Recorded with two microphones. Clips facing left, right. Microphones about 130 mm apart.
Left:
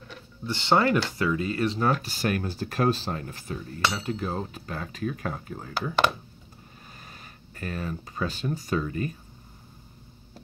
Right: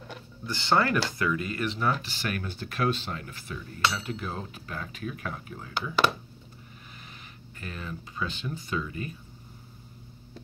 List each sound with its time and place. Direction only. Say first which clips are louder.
0.5 s speech: left 3 dB; 20° left (ahead or behind); by 5.9 s 40° left (ahead or behind)
7.5 s speech: left 6 dB; 40° left (ahead or behind)